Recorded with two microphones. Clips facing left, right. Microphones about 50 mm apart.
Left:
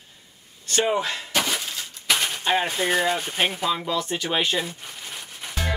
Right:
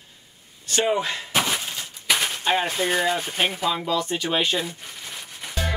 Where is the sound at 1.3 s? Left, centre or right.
Centre.